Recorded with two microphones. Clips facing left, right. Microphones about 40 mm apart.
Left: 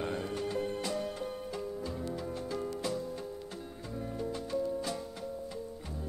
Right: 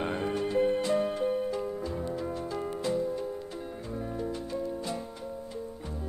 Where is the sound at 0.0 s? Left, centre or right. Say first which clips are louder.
Right 5 dB; right.